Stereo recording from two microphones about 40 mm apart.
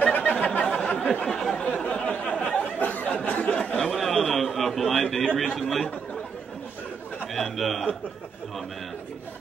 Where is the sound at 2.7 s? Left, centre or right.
Left.